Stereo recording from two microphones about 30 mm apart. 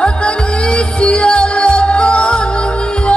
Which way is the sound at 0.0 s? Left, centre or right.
Left.